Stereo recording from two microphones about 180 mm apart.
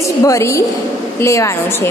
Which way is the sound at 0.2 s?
15° left (ahead or behind).